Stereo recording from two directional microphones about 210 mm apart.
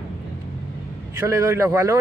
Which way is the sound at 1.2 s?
15° right (ahead or behind).